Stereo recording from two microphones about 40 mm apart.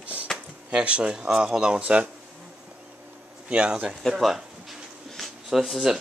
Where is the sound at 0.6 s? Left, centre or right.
Right.